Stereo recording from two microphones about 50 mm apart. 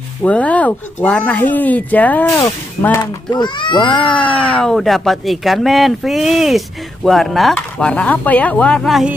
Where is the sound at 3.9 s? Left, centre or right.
Centre.